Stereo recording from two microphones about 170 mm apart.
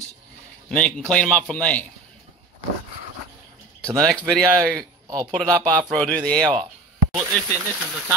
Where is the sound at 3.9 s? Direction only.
5° left (ahead or behind).